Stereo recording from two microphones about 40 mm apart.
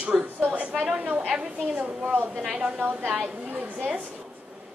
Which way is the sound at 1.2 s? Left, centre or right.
Right.